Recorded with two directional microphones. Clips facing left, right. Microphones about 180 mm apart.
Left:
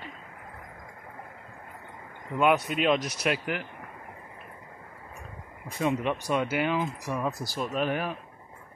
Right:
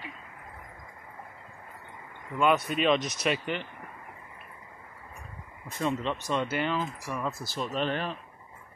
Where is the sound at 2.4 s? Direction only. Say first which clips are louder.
Left 1 dB; 15° left (ahead or behind).